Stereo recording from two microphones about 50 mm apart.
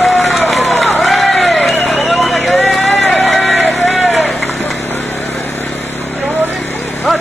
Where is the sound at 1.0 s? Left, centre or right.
Centre.